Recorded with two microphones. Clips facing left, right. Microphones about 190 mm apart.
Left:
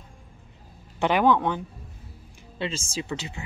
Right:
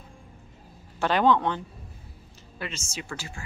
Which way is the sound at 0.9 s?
15° left (ahead or behind).